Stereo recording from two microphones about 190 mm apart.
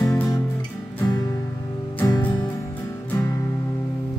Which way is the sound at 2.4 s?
10° left (ahead or behind).